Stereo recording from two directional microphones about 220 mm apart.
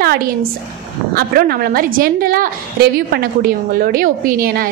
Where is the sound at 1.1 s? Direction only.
45° right (ahead or behind).